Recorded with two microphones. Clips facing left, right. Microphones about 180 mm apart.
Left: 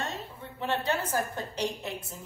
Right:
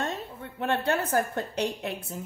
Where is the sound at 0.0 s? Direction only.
55° right (ahead or behind).